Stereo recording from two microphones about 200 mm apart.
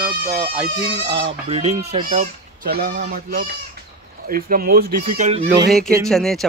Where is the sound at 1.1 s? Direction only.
25° right (ahead or behind).